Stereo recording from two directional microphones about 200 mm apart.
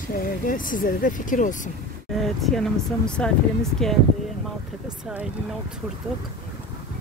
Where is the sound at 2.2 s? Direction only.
Centre (ahead or behind).